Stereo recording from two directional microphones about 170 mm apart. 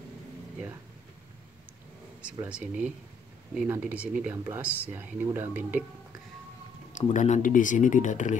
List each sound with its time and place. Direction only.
2.4 s speech: 5° right (ahead or behind)
7.0 s speech: 45° left (ahead or behind)